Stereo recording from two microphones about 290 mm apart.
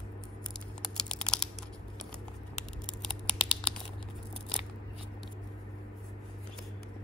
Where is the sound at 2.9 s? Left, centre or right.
Centre.